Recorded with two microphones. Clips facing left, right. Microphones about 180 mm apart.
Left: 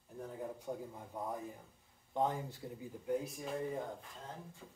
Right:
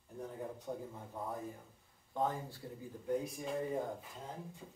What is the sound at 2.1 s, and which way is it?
Speech, 20° left (ahead or behind).